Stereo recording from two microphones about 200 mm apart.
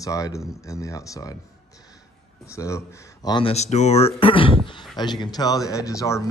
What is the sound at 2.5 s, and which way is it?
Speech, 15° left (ahead or behind).